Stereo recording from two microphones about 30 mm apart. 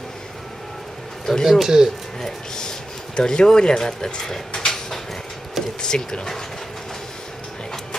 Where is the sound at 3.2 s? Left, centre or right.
Left.